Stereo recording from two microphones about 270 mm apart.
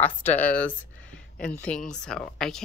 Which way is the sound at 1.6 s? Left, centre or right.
Centre.